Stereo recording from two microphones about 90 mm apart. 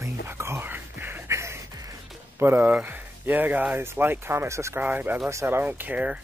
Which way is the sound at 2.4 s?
25° right (ahead or behind).